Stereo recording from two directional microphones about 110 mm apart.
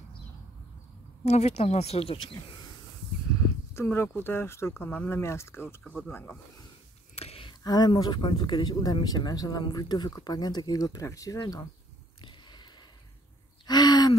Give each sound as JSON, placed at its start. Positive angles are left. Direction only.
{"t": 1.2, "sound": "speech", "side_deg": 75}
{"t": 3.7, "sound": "speech", "side_deg": 25}
{"t": 7.2, "sound": "a sound", "side_deg": 60}
{"t": 7.6, "sound": "speech", "side_deg": 40}
{"t": 12.2, "sound": "a sound", "side_deg": 45}
{"t": 13.7, "sound": "gasp", "side_deg": 40}